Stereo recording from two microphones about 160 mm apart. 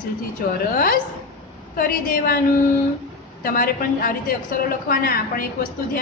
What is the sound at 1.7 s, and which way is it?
Speech, 65° left (ahead or behind).